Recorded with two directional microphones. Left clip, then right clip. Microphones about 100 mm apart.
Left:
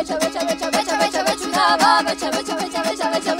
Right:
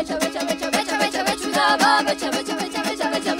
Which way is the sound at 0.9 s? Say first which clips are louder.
Left 3 dB; 5° left (ahead or behind).